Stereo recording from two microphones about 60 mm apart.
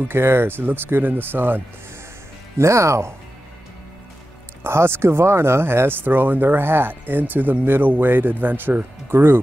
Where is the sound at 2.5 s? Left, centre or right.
Right.